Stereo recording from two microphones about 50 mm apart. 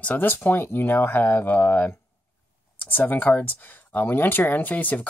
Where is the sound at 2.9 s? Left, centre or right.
Left.